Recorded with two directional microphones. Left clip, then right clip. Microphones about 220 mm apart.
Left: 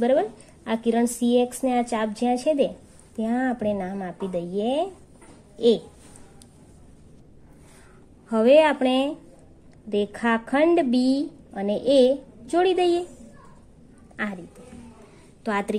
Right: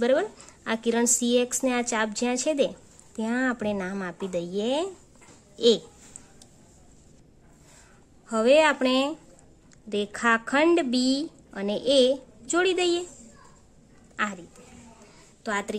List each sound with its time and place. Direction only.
0.0 s a woman's voice: 15° right (ahead or behind)
8.3 s a woman's voice: centre (ahead or behind)
14.1 s speech: 5° right (ahead or behind)
15.4 s a woman's voice: 5° left (ahead or behind)